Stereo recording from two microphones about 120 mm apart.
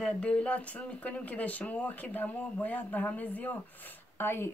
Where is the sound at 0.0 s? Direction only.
10° left (ahead or behind).